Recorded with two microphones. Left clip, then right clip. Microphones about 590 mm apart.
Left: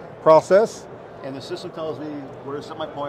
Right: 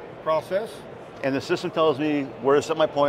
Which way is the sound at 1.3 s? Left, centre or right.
Right.